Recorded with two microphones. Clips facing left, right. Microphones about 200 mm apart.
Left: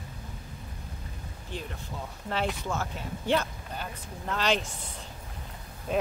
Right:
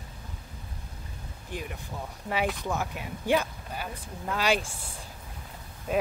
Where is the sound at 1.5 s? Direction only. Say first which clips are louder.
Right 1 dB; 10° right (ahead or behind).